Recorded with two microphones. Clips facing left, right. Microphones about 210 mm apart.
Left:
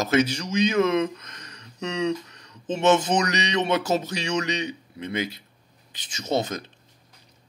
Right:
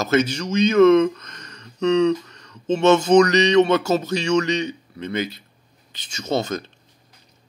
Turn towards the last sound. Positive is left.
turn(degrees=15)  # may be behind; listen again after turning